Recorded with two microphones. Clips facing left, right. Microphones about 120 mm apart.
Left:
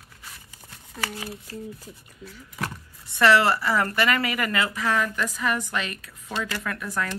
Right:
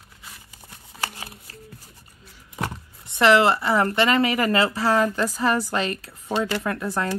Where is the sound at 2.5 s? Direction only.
25° right (ahead or behind).